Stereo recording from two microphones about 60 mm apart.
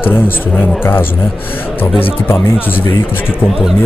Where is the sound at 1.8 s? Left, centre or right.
Left.